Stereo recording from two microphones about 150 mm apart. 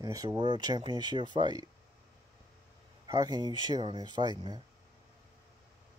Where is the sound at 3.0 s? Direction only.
25° right (ahead or behind).